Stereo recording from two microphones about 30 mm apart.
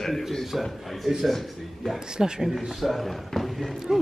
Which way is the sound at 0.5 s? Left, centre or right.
Centre.